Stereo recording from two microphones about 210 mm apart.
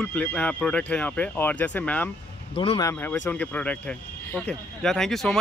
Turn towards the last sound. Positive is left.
turn(degrees=0)  # may be behind; listen again after turning